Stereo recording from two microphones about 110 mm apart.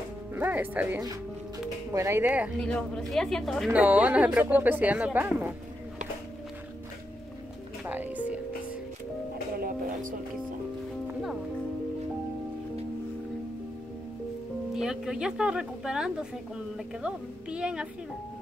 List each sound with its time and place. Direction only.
0.3 s speech: 15° right (ahead or behind)
2.6 s a woman's voice: 5° left (ahead or behind)
3.7 s a woman's voice: 15° right (ahead or behind)
7.8 s music: 15° right (ahead or behind)
14.7 s a woman's voice: 5° right (ahead or behind)